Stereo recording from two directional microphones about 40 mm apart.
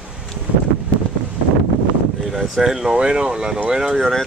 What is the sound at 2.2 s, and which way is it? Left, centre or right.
Speech, centre.